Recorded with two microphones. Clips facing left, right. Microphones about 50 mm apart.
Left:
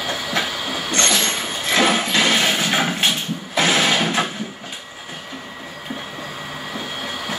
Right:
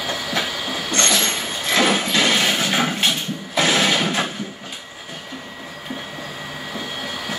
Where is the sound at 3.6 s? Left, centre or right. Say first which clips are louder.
Left 1 dB; left.